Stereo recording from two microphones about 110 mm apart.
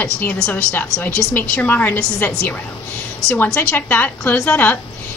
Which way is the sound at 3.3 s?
20° left (ahead or behind).